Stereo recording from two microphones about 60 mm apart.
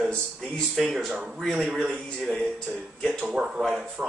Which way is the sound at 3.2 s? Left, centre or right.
Centre.